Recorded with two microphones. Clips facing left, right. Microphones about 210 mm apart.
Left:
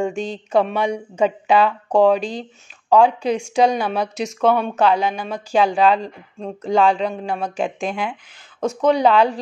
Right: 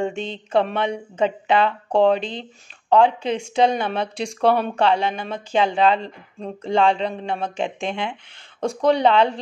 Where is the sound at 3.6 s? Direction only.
25° right (ahead or behind).